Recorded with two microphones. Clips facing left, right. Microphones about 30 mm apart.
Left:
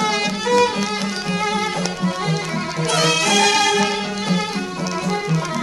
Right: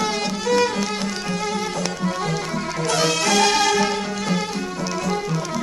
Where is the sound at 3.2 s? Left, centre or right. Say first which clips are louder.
Left 1 dB; centre.